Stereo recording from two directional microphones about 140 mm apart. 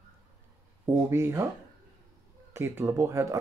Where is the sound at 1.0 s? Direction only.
20° right (ahead or behind).